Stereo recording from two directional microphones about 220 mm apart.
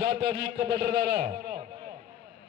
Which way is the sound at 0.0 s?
50° right (ahead or behind).